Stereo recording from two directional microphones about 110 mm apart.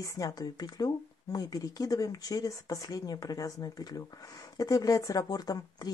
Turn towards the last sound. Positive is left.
turn(degrees=35)  # may be behind; listen again after turning